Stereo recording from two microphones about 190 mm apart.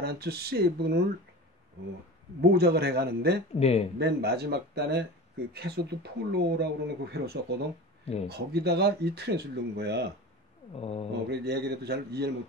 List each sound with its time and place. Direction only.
0.0 s speech: 55° right (ahead or behind)
2.4 s speech: 55° right (ahead or behind)
3.5 s speech: 35° left (ahead or behind)
4.0 s speech: 60° right (ahead or behind)
10.8 s speech: 30° left (ahead or behind)
11.2 s speech: 60° right (ahead or behind)